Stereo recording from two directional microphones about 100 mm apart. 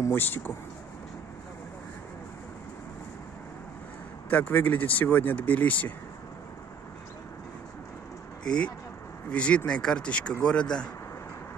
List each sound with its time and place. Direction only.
0.0 s speech: 25° left (ahead or behind)
4.3 s speech: 15° left (ahead or behind)
8.5 s speech: 10° left (ahead or behind)